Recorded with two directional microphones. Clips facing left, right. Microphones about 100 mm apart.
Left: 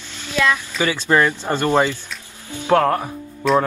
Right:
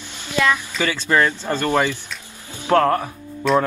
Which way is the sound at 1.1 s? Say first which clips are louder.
Left 1 dB; 30° left (ahead or behind).